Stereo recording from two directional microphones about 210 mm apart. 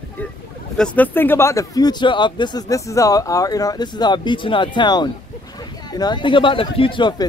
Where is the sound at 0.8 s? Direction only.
10° left (ahead or behind).